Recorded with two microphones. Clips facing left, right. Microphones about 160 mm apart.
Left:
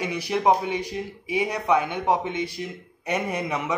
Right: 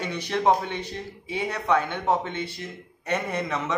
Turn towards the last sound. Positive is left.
turn(degrees=10)  # may be behind; listen again after turning